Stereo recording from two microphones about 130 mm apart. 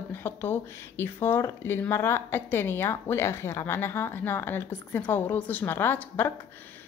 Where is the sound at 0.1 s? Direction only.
15° left (ahead or behind).